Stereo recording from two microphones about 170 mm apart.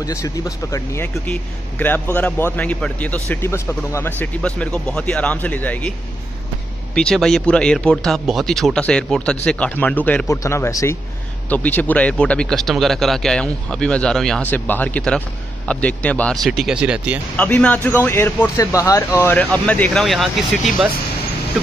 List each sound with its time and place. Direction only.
0.0 s a man's voice: 20° left (ahead or behind)
7.0 s a man's voice: 5° left (ahead or behind)
17.4 s a man's voice: 10° left (ahead or behind)